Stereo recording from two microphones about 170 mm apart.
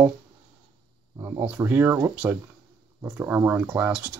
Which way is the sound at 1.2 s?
20° right (ahead or behind).